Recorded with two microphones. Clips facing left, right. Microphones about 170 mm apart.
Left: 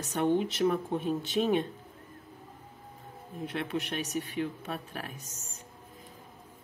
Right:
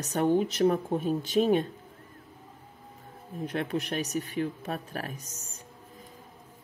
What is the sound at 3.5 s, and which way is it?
Speech, 40° right (ahead or behind).